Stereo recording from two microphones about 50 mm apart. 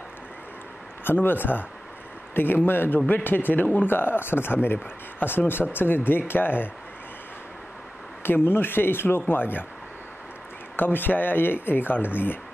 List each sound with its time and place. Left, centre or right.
1.0 s speech: left
8.2 s speech: left
10.8 s speech: left